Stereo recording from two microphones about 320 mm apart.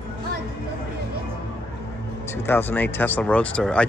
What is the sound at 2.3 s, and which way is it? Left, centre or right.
Speech, centre.